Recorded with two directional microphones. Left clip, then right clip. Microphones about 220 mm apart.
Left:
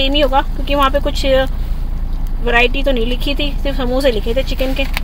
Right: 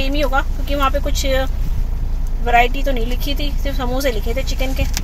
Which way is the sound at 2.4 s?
20° left (ahead or behind).